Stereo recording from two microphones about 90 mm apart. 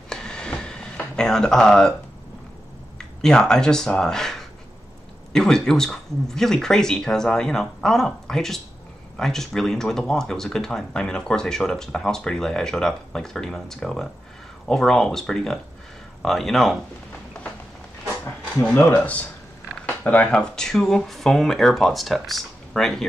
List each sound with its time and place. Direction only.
0.1 s a sound: 10° left (ahead or behind)
3.0 s speech: 5° left (ahead or behind)
18.6 s speech: 20° left (ahead or behind); by 23.0 s 5° left (ahead or behind)